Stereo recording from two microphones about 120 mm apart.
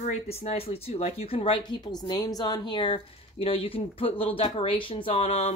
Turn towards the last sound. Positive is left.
turn(degrees=55)  # may be behind; listen again after turning